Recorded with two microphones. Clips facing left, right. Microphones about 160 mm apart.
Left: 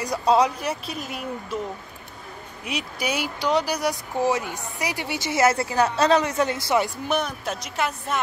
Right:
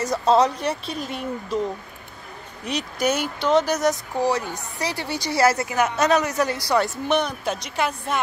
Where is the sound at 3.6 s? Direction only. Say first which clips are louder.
Right 4 dB; 45° right (ahead or behind).